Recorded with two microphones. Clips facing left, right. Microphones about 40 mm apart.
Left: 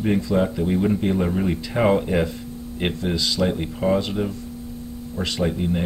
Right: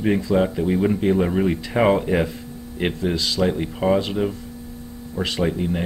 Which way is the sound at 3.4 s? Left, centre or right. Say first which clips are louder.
Right 2 dB; centre.